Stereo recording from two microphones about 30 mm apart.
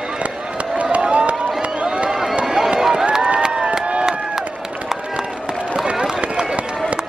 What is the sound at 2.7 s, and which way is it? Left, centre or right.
Run, centre.